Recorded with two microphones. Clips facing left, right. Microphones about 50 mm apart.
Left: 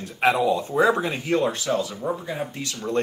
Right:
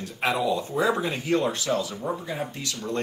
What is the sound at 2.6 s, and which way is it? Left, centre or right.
Speech, left.